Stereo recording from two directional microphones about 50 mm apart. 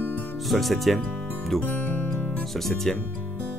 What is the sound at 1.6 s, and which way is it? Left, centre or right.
Music, left.